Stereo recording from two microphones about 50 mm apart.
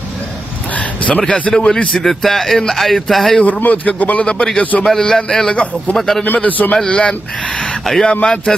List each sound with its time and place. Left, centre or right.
0.7 s vehicle: left
2.0 s speech: centre
3.6 s a man's voice: left
4.3 s a man's voice: centre
5.9 s speech: centre
6.2 s a man's voice: left
6.9 s speech: left
7.8 s speech: centre
8.1 s a man's voice: centre